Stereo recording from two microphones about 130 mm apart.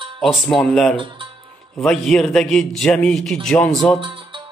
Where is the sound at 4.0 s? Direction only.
40° right (ahead or behind).